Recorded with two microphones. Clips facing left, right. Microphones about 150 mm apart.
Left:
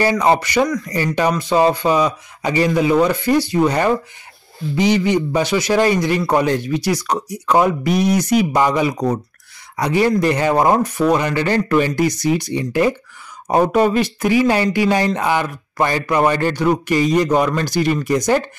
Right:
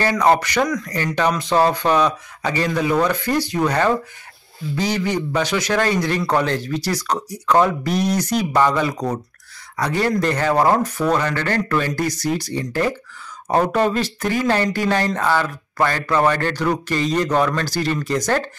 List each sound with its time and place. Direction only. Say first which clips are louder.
0.0 s speech: left 1 dB; 5° left (ahead or behind)